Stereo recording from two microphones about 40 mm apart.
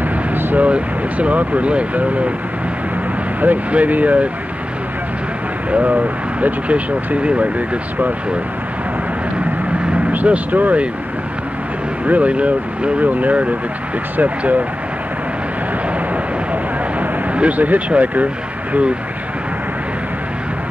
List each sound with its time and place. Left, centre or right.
0.6 s speech: right
3.3 s speech: right
5.7 s speech: right
10.2 s speech: right
12.1 s speech: right
17.3 s speech: right